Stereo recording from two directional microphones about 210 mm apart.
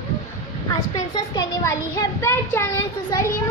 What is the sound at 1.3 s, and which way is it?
A child's voice, 15° left (ahead or behind).